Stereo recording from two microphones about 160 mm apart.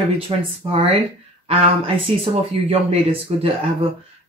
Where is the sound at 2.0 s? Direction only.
35° right (ahead or behind).